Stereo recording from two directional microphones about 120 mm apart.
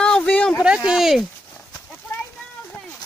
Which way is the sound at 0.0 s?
5° left (ahead or behind).